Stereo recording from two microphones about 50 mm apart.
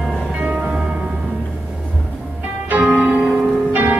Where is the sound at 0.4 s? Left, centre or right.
Right.